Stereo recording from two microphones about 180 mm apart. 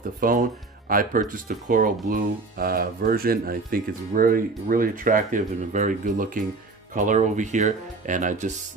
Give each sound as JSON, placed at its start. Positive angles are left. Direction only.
{"t": 0.2, "sound": "speech", "side_deg": -50}